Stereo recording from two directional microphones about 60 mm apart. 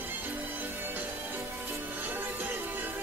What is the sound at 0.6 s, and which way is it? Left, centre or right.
Music, right.